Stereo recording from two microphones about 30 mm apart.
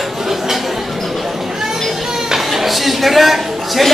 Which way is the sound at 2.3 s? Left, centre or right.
Centre.